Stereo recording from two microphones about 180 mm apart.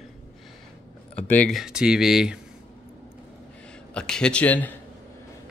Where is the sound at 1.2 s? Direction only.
10° left (ahead or behind).